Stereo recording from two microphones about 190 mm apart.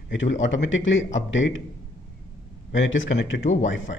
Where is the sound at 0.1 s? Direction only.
80° left.